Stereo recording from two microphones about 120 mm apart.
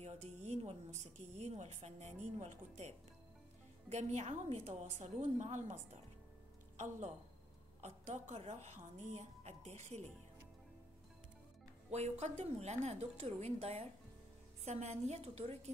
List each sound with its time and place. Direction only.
0.0 s a woman's voice: 75° right (ahead or behind)
3.9 s a woman's voice: 70° right (ahead or behind)
7.8 s a woman's voice: 70° right (ahead or behind)
11.9 s a woman's voice: 70° right (ahead or behind)